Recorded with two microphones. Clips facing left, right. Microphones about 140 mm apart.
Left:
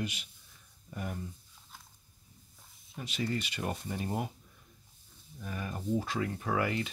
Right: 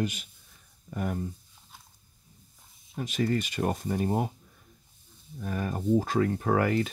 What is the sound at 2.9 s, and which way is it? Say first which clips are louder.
Speech: right 7 dB; 50° right (ahead or behind).